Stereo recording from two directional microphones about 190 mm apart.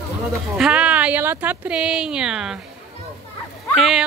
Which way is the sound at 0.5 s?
5° right (ahead or behind).